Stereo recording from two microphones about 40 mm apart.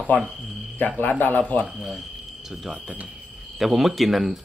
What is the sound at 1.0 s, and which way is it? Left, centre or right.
Speech, left.